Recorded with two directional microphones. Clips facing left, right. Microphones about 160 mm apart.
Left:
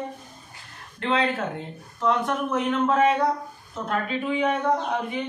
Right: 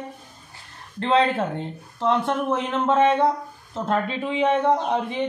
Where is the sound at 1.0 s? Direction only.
30° right (ahead or behind).